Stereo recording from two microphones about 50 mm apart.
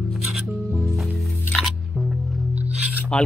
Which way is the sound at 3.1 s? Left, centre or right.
Left.